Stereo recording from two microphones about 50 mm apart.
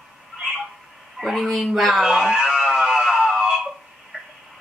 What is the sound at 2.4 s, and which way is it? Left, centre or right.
Music, centre.